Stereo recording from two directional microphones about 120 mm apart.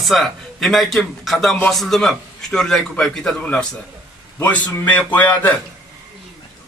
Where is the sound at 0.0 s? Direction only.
Centre (ahead or behind).